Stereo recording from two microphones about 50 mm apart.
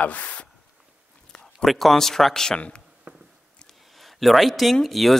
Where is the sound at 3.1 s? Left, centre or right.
Right.